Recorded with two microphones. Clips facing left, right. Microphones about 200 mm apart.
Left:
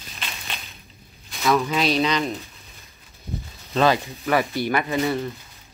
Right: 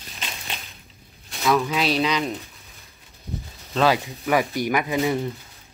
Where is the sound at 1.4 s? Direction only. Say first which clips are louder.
Left 1 dB; centre (ahead or behind).